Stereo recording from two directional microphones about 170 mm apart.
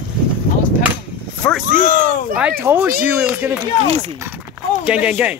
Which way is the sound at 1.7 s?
60° right (ahead or behind).